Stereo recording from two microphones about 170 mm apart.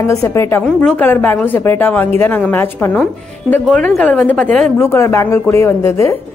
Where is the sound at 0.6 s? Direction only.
5° left (ahead or behind).